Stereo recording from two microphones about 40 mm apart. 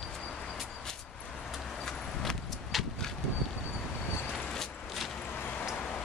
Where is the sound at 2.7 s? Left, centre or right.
Centre.